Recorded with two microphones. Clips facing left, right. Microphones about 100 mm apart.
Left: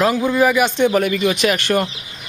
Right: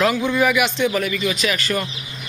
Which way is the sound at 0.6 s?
45° left (ahead or behind).